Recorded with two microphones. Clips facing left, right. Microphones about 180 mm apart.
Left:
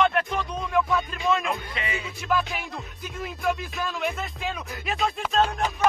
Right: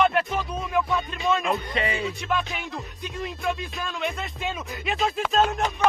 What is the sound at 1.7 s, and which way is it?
Speech, 40° right (ahead or behind).